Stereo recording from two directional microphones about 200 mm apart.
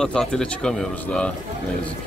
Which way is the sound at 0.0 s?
5° left (ahead or behind).